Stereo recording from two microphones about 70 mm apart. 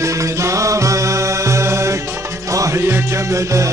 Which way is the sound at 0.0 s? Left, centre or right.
Right.